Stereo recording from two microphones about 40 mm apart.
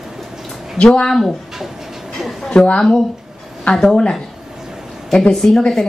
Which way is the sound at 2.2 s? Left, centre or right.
Centre.